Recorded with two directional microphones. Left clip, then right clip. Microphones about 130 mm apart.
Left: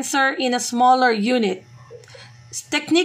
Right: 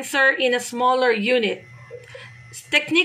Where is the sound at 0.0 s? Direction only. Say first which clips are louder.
Right 2 dB; 30° left (ahead or behind).